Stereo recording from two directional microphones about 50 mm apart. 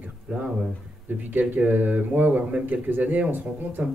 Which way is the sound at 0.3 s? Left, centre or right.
Right.